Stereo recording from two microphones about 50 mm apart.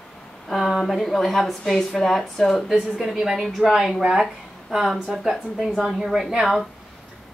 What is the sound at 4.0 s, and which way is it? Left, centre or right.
Speech, centre.